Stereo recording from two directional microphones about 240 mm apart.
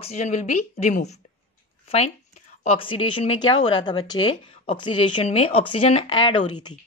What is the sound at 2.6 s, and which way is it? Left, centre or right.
A woman's voice, left.